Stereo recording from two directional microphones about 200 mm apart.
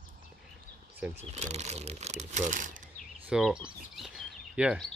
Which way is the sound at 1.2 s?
35° right (ahead or behind).